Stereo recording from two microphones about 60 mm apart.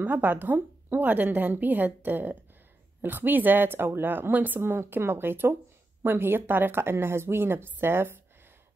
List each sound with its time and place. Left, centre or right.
0.0 s speech: right